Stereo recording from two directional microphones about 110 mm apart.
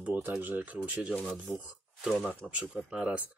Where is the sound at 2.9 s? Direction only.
10° right (ahead or behind).